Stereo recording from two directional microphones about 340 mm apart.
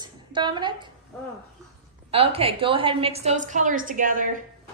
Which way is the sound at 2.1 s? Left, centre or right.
Centre.